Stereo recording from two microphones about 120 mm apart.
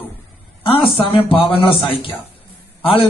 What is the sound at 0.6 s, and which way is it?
A man's voice, 45° left (ahead or behind).